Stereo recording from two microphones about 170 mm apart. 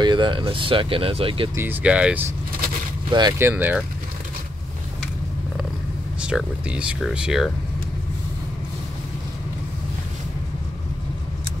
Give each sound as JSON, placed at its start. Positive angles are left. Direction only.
{"t": 0.0, "sound": "speech", "side_deg": -25}
{"t": 1.5, "sound": "speech", "side_deg": -15}
{"t": 3.1, "sound": "speech", "side_deg": -25}
{"t": 3.3, "sound": "speech", "side_deg": -10}
{"t": 6.2, "sound": "speech", "side_deg": -5}